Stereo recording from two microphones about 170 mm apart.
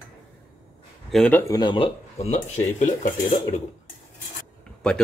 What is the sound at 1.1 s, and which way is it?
Speech, 5° left (ahead or behind).